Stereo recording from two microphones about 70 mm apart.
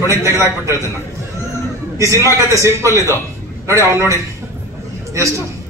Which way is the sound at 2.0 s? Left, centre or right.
Right.